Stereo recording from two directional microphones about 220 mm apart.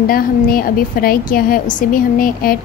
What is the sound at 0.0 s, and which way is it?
A woman's voice, 40° left (ahead or behind).